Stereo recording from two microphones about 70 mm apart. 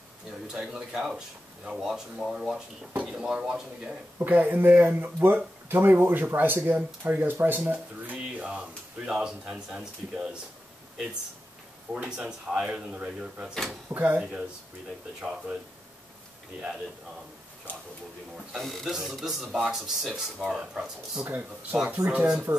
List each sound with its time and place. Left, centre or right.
0.5 s speech: centre
4.2 s speech: right
8.4 s speech: centre
11.9 s speech: centre
18.5 s a man's voice: centre